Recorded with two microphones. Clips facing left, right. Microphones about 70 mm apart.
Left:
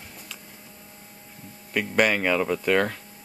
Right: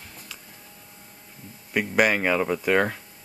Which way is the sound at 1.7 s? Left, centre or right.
Centre.